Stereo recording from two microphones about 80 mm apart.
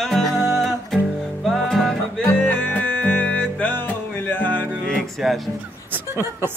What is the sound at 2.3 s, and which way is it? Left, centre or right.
Music, left.